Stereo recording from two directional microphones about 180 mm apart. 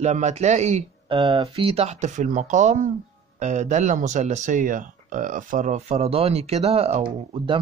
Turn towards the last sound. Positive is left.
turn(degrees=-35)  # may be behind; listen again after turning